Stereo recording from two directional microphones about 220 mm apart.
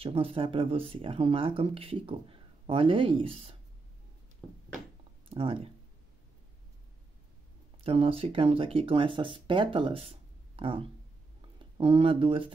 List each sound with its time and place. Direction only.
0.0 s speech: 25° right (ahead or behind)
4.4 s a sound: centre (ahead or behind)
5.3 s speech: 25° right (ahead or behind)
7.8 s speech: 25° right (ahead or behind)